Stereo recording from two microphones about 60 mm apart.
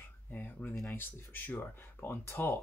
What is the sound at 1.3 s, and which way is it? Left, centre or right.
Speech, left.